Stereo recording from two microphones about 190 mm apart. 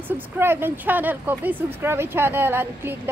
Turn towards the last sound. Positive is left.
turn(degrees=-10)  # may be behind; listen again after turning